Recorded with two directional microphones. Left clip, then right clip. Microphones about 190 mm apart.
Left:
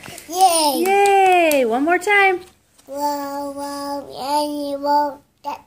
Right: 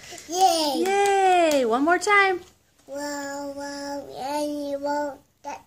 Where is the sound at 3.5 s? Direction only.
30° left (ahead or behind).